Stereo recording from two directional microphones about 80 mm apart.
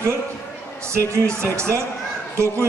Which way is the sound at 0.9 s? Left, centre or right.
Right.